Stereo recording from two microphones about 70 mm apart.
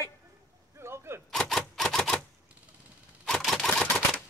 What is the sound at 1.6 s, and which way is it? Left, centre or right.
Typewriter, centre.